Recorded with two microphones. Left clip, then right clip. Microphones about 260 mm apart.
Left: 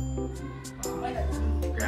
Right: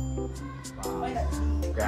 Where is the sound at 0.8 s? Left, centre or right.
Centre.